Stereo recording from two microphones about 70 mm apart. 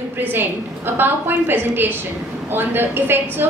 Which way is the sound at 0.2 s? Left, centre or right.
Right.